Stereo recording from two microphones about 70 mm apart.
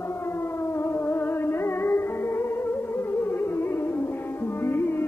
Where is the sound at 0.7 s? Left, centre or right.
Left.